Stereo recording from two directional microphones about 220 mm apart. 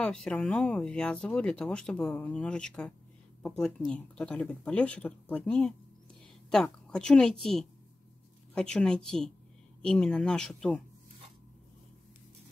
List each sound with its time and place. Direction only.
0.0 s a woman's voice: 5° left (ahead or behind)
8.5 s speech: 5° left (ahead or behind)